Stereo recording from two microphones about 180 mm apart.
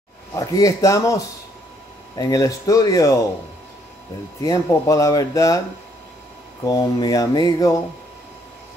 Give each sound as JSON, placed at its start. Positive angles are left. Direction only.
{"t": 0.4, "sound": "speech", "side_deg": 20}
{"t": 4.4, "sound": "speech", "side_deg": 20}
{"t": 6.6, "sound": "speech", "side_deg": 20}